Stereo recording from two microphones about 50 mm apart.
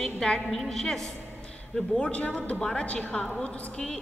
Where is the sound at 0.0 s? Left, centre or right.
Centre.